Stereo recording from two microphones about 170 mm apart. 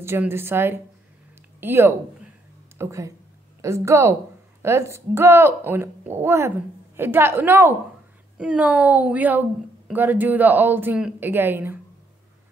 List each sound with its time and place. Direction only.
0.0 s a woman's voice: 15° right (ahead or behind)